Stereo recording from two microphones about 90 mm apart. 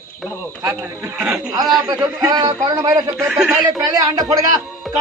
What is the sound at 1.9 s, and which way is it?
Speech, 45° right (ahead or behind).